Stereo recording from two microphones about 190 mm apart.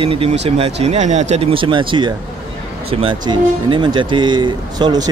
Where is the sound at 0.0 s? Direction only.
30° right (ahead or behind).